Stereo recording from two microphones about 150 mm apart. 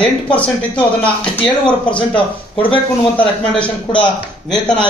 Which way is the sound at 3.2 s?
10° left (ahead or behind).